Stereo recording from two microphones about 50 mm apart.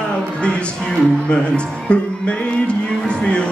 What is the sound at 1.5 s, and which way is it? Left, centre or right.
Music, left.